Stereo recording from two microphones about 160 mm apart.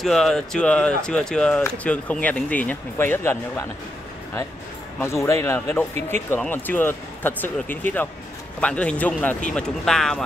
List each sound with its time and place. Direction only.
0.0 s speech: centre (ahead or behind)
5.0 s speech: 15° left (ahead or behind)